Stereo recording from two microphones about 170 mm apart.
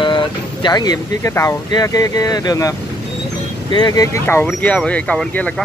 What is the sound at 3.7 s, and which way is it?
Speech, 25° left (ahead or behind).